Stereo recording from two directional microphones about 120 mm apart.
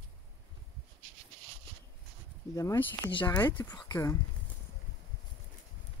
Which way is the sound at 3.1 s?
45° left (ahead or behind).